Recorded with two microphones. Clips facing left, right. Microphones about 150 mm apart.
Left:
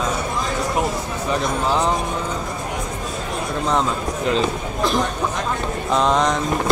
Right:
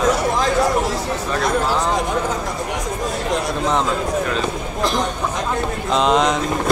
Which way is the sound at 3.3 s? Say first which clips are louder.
Right 5 dB; 90° right.